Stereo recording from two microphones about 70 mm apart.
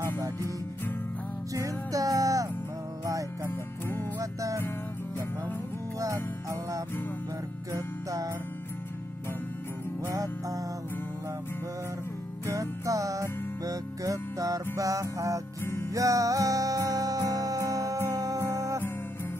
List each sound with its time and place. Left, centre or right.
1.5 s music: right
4.2 s music: right
7.7 s music: right
10.0 s music: right
12.4 s music: right
15.6 s music: left
15.9 s music: right